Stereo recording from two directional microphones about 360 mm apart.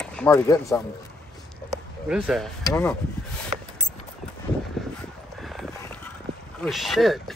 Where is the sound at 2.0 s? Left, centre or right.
Centre.